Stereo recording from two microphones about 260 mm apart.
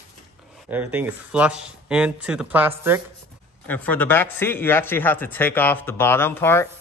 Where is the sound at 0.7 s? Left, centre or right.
Centre.